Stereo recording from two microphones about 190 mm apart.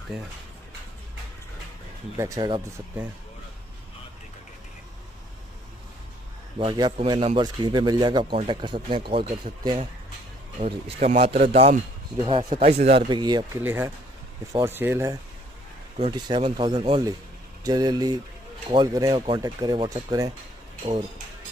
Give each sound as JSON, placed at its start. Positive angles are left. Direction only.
{"t": 2.1, "sound": "speech", "side_deg": -15}
{"t": 6.6, "sound": "speech", "side_deg": -25}
{"t": 12.3, "sound": "speech", "side_deg": -30}
{"t": 13.6, "sound": "speech", "side_deg": -10}
{"t": 16.0, "sound": "speech", "side_deg": -25}